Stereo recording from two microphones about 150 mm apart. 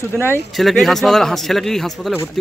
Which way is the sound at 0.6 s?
Centre (ahead or behind).